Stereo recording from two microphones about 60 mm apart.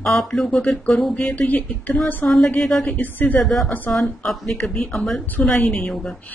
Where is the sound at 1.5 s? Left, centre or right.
Left.